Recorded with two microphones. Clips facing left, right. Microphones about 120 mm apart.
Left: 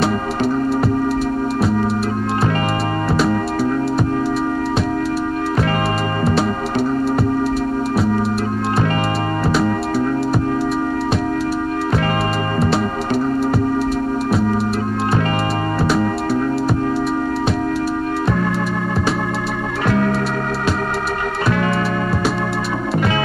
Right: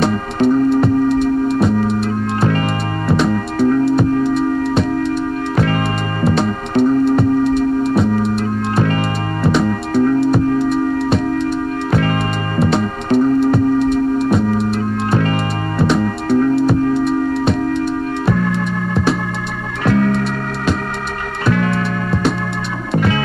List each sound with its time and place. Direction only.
0.0 s music: centre (ahead or behind)
6.2 s music: centre (ahead or behind)
9.4 s music: centre (ahead or behind)
12.5 s music: centre (ahead or behind)
21.5 s music: 25° left (ahead or behind)